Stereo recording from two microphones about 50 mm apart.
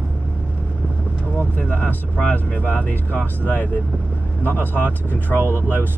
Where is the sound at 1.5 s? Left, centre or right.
Left.